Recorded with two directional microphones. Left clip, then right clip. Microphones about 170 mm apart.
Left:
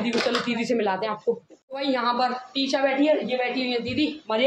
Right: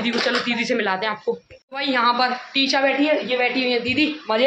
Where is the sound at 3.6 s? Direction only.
35° right (ahead or behind).